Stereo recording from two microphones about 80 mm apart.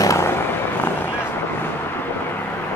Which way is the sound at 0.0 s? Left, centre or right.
Left.